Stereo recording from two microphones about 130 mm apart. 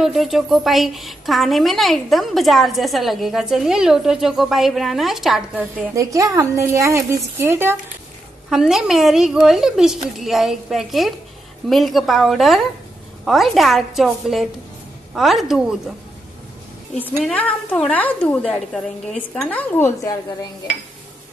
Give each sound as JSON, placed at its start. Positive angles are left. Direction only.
{"t": 0.0, "sound": "a woman's voice", "side_deg": 0}
{"t": 5.9, "sound": "a woman's voice", "side_deg": -25}
{"t": 8.5, "sound": "a woman's voice", "side_deg": -5}
{"t": 17.3, "sound": "a woman's voice", "side_deg": 10}
{"t": 20.0, "sound": "a woman's voice", "side_deg": 30}